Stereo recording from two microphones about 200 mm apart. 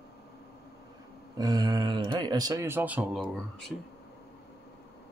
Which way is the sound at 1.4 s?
20° right (ahead or behind).